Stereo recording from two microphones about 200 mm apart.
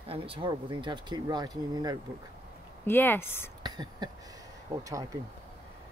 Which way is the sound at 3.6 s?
20° right (ahead or behind).